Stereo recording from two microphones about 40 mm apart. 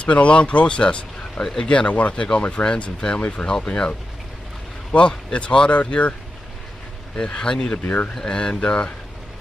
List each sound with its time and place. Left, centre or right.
0.0 s speech: left
1.8 s speech: left
4.9 s speech: left
7.2 s speech: left
7.7 s speech: left
8.1 s speech: centre
8.5 s speech: left